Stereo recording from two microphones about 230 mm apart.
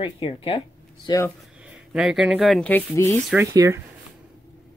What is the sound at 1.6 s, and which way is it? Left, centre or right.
Speech, centre.